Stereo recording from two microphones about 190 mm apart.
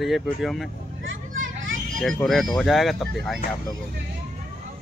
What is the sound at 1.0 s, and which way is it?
Vehicle, 90° right.